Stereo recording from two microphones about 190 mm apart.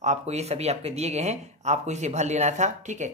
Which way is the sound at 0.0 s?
35° right (ahead or behind).